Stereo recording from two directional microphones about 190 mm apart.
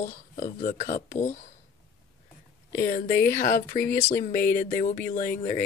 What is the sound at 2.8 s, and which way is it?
Speech, 45° left (ahead or behind).